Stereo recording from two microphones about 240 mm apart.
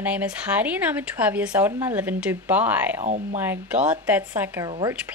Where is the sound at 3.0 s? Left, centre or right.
Right.